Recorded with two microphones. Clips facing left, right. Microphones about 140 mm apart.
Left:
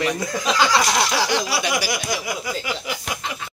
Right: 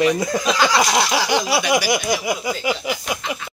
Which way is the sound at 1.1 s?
15° right (ahead or behind).